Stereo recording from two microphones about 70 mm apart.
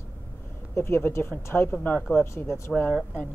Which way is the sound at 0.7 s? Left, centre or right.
Left.